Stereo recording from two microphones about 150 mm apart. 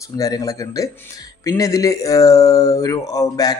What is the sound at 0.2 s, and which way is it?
A man's voice, 25° left (ahead or behind).